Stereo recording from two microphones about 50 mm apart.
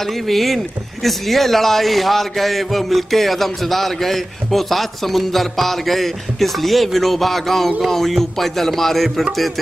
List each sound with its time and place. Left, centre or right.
0.0 s a man's voice: centre